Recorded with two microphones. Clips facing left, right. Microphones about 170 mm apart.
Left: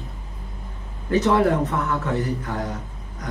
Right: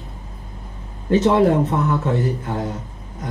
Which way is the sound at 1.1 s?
25° right (ahead or behind).